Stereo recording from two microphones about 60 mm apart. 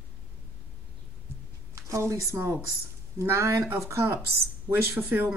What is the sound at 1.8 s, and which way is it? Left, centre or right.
Speech, right.